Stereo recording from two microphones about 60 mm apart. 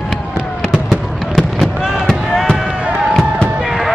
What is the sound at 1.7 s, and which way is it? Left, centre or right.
Fireworks, centre.